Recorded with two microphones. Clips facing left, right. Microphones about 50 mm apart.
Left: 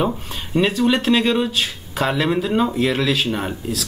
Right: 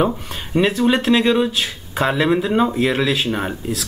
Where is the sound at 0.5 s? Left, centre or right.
Centre.